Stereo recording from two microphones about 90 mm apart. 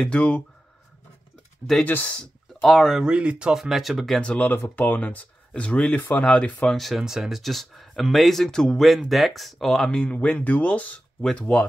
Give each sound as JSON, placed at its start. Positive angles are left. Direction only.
{"t": 0.0, "sound": "speech", "side_deg": 15}
{"t": 1.9, "sound": "speech", "side_deg": 20}
{"t": 2.1, "sound": "speech", "side_deg": 5}
{"t": 3.0, "sound": "speech", "side_deg": -10}
{"t": 4.2, "sound": "speech", "side_deg": 15}